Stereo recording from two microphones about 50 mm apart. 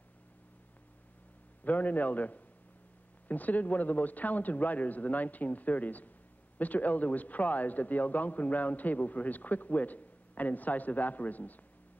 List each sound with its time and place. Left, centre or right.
1.6 s a man's voice: left